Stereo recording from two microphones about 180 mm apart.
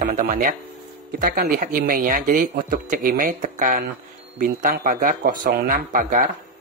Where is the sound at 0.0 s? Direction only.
50° right (ahead or behind).